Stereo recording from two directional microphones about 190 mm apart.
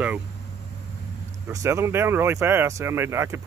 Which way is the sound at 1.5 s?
15° right (ahead or behind).